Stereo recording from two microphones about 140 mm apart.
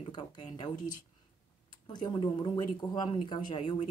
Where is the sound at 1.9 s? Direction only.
30° left (ahead or behind).